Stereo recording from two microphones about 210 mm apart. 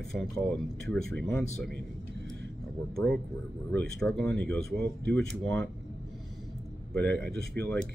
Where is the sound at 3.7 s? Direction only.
5° left (ahead or behind).